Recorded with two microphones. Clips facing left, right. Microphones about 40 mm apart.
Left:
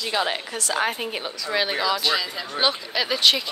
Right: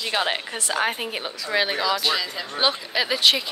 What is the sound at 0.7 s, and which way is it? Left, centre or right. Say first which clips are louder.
A woman's voice: even; centre.